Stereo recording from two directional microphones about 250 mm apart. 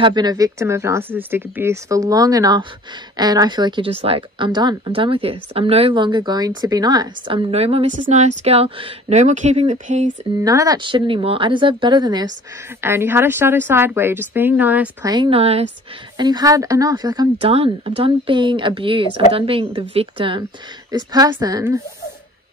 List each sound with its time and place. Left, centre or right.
0.0 s a woman's voice: centre
10.4 s a woman's voice: centre